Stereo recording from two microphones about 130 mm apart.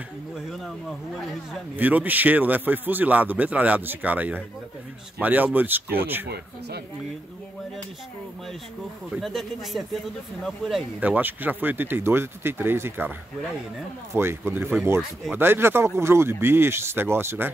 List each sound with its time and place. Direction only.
1.8 s a man's voice: 15° right (ahead or behind)
9.1 s speech: centre (ahead or behind)
11.0 s a man's voice: 10° right (ahead or behind)
14.1 s speech: 20° right (ahead or behind)